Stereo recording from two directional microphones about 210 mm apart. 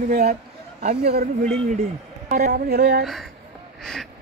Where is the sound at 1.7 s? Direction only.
35° right (ahead or behind); by 3.1 s 50° right (ahead or behind).